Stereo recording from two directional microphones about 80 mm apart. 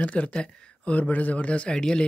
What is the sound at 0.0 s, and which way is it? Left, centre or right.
Speech, centre.